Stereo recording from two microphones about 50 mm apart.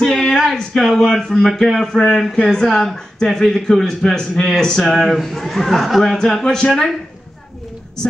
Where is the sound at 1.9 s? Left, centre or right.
Centre.